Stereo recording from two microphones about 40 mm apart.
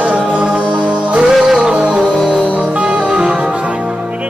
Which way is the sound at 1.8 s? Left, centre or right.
Right.